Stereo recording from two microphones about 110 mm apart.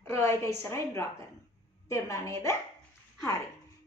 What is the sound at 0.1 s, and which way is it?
A woman's voice, 25° left (ahead or behind).